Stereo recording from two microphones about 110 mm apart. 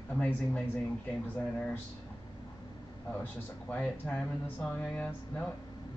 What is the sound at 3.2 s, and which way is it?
Speech, 15° left (ahead or behind).